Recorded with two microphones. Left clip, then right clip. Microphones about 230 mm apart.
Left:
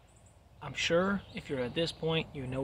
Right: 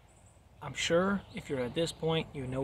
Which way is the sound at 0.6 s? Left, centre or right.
Centre.